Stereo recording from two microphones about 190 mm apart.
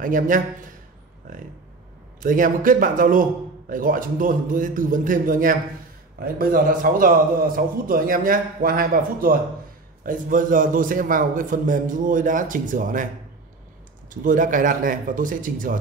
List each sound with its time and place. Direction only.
0.0 s a man's voice: 45° right (ahead or behind)
2.1 s a man's voice: 45° right (ahead or behind)
14.2 s a man's voice: 45° right (ahead or behind)